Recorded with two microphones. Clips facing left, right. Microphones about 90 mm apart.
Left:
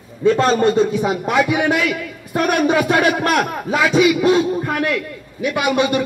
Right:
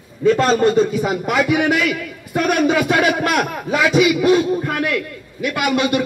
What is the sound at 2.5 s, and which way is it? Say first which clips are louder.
Speech: even; 25° left (ahead or behind).